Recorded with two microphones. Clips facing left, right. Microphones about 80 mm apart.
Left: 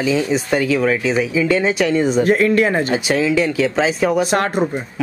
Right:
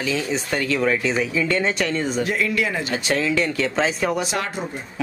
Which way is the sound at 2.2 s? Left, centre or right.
Left.